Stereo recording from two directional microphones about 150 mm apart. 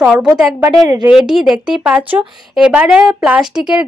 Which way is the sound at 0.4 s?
5° right (ahead or behind).